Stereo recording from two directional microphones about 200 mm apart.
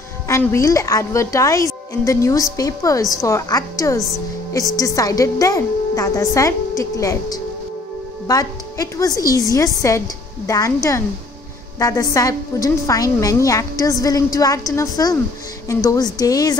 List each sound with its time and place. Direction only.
0.3 s a woman's voice: 15° left (ahead or behind)